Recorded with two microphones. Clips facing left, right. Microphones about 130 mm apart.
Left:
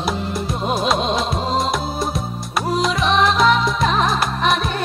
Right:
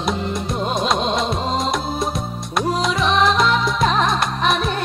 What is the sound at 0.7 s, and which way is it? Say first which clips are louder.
Music: left 1 dB; centre (ahead or behind).